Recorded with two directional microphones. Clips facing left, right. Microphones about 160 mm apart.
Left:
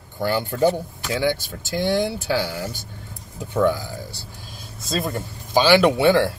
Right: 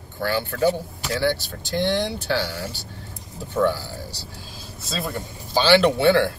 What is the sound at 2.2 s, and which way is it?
Speech, 15° left (ahead or behind).